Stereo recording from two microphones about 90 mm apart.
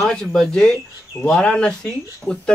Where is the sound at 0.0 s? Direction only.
5° left (ahead or behind).